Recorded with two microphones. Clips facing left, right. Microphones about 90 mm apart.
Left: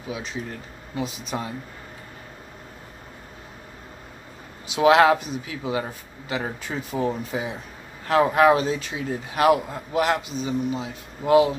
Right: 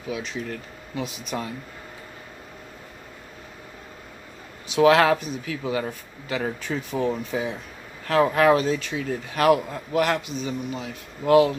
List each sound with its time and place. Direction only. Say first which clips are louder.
0.1 s speech: right 2 dB; 25° left (ahead or behind)
4.7 s speech: left 1 dB; 20° left (ahead or behind)